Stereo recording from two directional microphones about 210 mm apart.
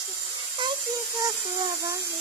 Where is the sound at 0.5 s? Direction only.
15° right (ahead or behind).